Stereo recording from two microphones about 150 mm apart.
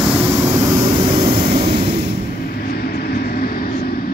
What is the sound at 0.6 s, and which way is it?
Vehicle, 30° right (ahead or behind).